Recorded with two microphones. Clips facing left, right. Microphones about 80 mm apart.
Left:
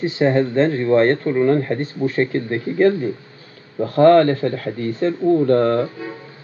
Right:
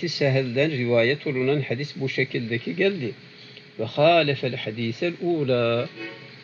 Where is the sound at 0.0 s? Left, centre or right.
Left.